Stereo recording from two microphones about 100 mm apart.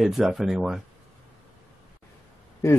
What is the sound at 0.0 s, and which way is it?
Speech, centre (ahead or behind).